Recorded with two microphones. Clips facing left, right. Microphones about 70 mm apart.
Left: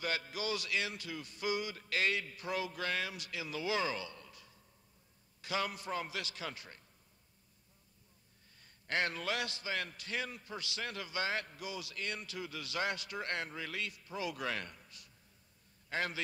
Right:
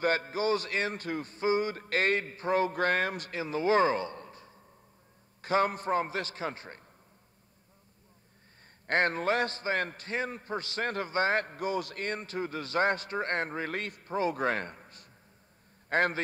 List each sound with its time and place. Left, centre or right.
0.0 s a man's voice: right
8.8 s a man's voice: right